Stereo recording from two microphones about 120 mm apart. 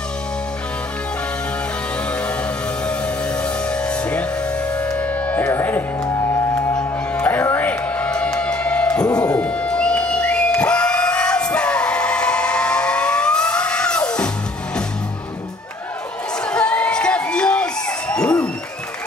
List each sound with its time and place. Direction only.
3.4 s music: 10° left (ahead or behind)
6.0 s music: 30° left (ahead or behind)
7.2 s music: 15° left (ahead or behind)
9.0 s music: 30° left (ahead or behind)
9.3 s music: 10° left (ahead or behind)
16.4 s crowd: 10° left (ahead or behind)